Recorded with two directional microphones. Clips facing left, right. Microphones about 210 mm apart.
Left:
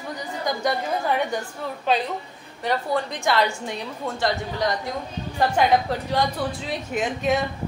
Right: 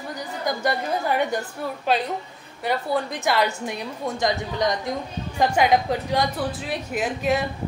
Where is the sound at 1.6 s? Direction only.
10° right (ahead or behind).